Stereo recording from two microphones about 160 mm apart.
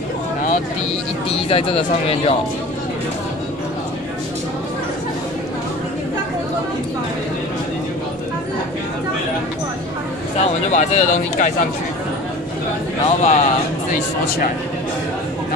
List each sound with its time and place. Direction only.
1.5 s speech: 35° left (ahead or behind)
10.7 s speech: 45° left (ahead or behind)
13.0 s speech: 50° left (ahead or behind)